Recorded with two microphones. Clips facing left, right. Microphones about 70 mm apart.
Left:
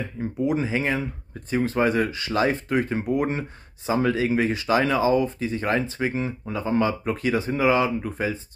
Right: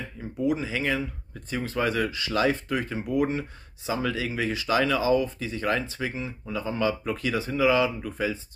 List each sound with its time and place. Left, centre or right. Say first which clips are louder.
0.4 s speech: left 2 dB; left